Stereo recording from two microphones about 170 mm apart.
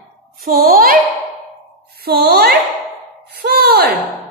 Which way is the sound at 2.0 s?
65° right (ahead or behind).